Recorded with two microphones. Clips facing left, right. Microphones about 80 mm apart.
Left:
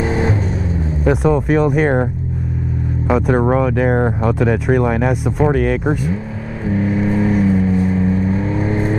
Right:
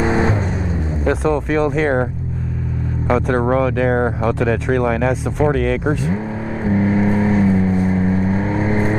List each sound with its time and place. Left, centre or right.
0.0 s vehicle: right
1.0 s speech: centre
3.1 s speech: centre
6.6 s vehicle: right